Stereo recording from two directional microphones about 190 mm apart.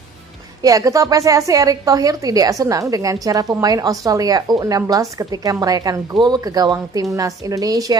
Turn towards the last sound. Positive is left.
turn(degrees=-20)  # may be behind; listen again after turning